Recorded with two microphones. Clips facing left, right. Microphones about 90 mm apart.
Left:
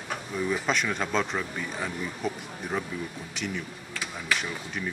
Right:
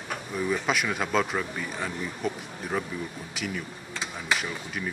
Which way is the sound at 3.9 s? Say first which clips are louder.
Right 1 dB; 20° right (ahead or behind).